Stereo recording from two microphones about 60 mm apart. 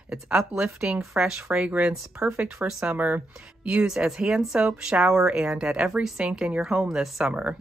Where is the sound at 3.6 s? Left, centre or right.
Centre.